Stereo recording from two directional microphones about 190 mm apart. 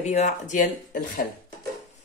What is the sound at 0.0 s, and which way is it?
Speech, 35° left (ahead or behind).